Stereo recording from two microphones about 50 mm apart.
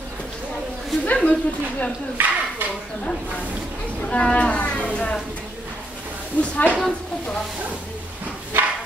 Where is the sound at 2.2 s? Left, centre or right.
Right.